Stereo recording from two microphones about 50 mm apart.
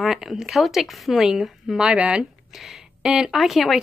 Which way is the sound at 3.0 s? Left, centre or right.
Centre.